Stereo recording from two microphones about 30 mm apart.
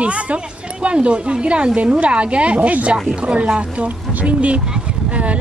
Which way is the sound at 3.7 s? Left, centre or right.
Right.